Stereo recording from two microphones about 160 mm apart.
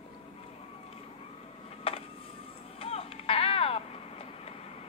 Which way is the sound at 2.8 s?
40° left (ahead or behind).